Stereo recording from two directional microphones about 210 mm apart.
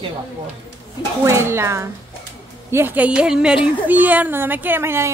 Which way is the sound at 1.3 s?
15° right (ahead or behind).